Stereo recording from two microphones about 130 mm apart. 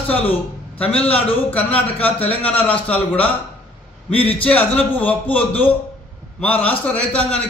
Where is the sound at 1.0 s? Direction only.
10° left (ahead or behind).